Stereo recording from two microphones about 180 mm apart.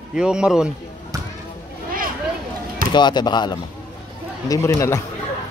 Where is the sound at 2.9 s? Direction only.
25° left (ahead or behind).